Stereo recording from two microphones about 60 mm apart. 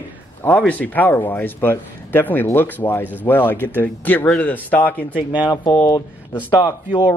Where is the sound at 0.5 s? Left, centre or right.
Left.